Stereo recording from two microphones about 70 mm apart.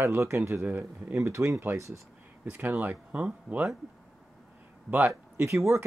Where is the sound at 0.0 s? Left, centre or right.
Right.